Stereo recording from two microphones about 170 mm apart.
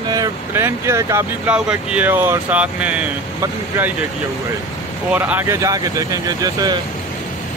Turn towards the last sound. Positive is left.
turn(degrees=-20)  # may be behind; listen again after turning